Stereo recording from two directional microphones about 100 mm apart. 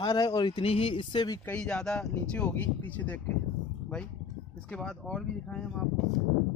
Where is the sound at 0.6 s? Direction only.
70° left (ahead or behind).